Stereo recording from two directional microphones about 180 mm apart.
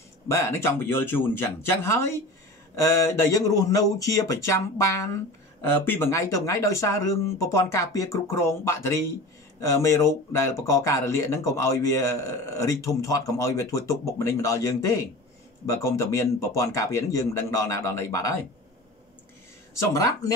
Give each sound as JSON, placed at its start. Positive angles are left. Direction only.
{"t": 0.3, "sound": "speech", "side_deg": 15}
{"t": 10.3, "sound": "speech", "side_deg": 15}
{"t": 19.8, "sound": "speech", "side_deg": 20}